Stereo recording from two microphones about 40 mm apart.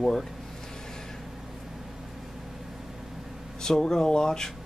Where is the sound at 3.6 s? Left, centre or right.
Centre.